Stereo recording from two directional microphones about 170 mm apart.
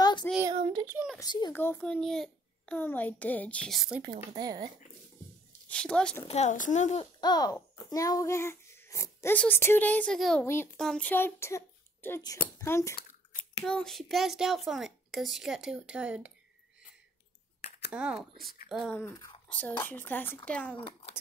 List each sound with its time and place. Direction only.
0.5 s child singing: 30° right (ahead or behind)
0.9 s a sound: centre (ahead or behind)
1.2 s a child's voice: 25° left (ahead or behind)
1.5 s a child's voice: 10° left (ahead or behind)
4.0 s speech: 25° right (ahead or behind)
5.7 s a child's voice: 5° left (ahead or behind)
6.2 s speech: 40° left (ahead or behind)
7.2 s a child's voice: 25° left (ahead or behind); by 10.4 s centre (ahead or behind)
10.4 s a child's voice: 15° left (ahead or behind)
13.7 s a child's voice: centre (ahead or behind)
17.9 s speech: 5° right (ahead or behind)
18.9 s a child's voice: 15° left (ahead or behind)